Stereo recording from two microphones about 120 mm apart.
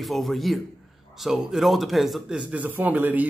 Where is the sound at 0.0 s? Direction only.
Centre (ahead or behind).